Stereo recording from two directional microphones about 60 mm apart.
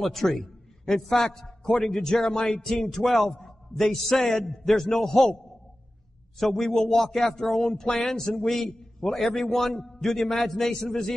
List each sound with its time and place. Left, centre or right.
0.0 s a man's voice: centre
6.4 s a man's voice: centre